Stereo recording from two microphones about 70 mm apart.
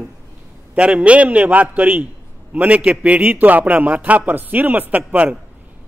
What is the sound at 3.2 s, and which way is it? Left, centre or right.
A man's voice, right.